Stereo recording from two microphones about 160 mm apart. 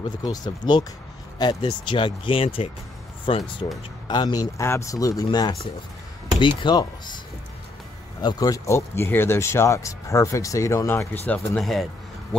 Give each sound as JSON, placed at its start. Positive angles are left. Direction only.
{"t": 0.2, "sound": "speech", "side_deg": 25}
{"t": 8.2, "sound": "speech", "side_deg": 25}
{"t": 11.2, "sound": "a man's voice", "side_deg": 5}